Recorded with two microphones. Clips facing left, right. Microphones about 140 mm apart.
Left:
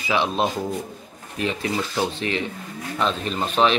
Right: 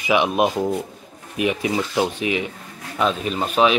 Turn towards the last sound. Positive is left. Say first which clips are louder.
# right 2 dB
turn(degrees=-5)  # may be behind; listen again after turning